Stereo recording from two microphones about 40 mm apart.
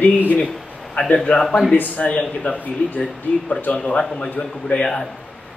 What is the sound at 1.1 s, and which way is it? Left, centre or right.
Speech, left.